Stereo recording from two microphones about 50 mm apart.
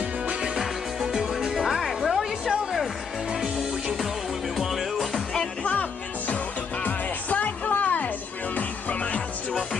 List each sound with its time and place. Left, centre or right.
0.3 s music: centre
5.3 s music: centre
5.7 s music: left